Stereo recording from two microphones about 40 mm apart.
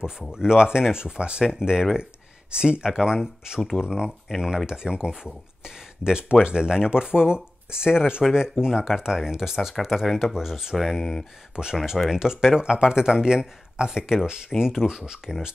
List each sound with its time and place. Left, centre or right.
0.3 s speech: centre
2.9 s speech: centre
10.3 s speech: centre
11.0 s speech: centre
11.5 s speech: centre